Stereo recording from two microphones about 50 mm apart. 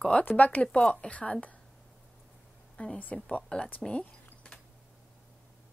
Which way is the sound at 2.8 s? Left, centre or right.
Left.